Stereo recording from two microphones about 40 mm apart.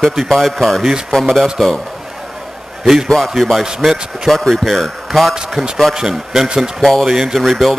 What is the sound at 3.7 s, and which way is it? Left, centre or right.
Speech, centre.